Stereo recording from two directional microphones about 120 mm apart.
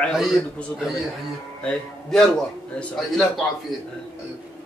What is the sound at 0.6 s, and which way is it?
A man's voice, 5° left (ahead or behind).